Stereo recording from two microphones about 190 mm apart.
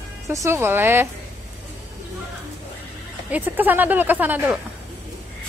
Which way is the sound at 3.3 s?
10° right (ahead or behind).